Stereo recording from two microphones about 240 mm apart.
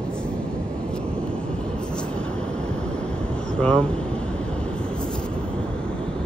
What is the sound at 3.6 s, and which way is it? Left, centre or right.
Speech, centre.